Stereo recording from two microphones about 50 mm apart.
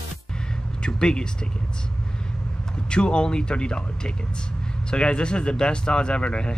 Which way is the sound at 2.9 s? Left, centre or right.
Centre.